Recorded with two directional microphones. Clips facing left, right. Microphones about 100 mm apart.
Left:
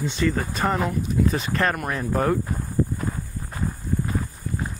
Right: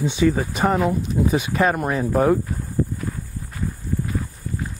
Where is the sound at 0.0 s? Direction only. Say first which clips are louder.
Right 5 dB; 10° right (ahead or behind).